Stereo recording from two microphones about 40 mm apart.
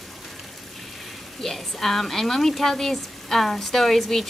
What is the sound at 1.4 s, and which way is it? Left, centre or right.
A woman's voice, centre.